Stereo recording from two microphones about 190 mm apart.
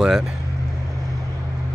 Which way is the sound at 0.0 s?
5° right (ahead or behind).